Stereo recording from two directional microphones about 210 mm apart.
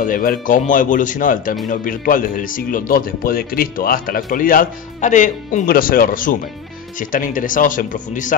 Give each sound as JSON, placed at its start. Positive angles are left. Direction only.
{"t": 0.0, "sound": "speech", "side_deg": 40}